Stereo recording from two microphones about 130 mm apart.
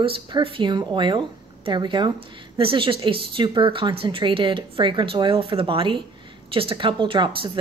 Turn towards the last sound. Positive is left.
turn(degrees=-40)  # may be behind; listen again after turning